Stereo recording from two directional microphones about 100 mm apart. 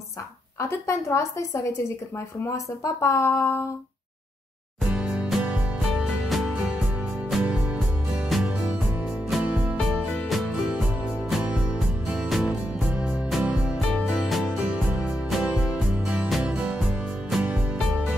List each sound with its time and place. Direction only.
0.6 s speech: 30° left (ahead or behind)
4.8 s music: 10° right (ahead or behind)
12.1 s music: 5° right (ahead or behind)
13.7 s music: 5° left (ahead or behind)